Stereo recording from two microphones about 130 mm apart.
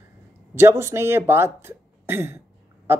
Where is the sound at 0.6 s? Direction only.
20° right (ahead or behind).